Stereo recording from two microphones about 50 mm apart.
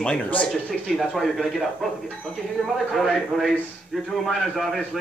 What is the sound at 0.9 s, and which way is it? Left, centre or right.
A man's voice, centre.